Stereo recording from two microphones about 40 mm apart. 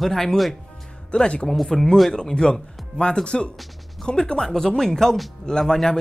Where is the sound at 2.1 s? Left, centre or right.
Centre.